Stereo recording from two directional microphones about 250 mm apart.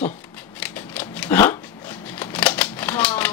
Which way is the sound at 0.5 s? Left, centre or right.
Centre.